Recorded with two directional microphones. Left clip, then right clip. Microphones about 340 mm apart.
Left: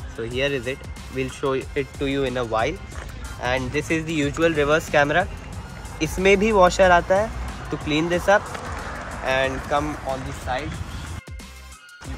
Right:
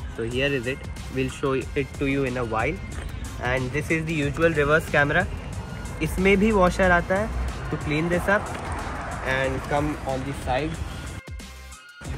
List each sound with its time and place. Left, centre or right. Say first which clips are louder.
0.4 s speech: left 1 dB; left
10.5 s speech: right 1 dB; centre